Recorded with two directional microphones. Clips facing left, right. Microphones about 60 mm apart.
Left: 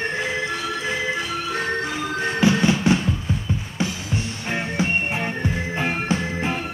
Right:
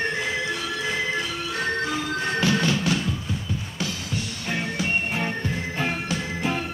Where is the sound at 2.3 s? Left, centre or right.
Left.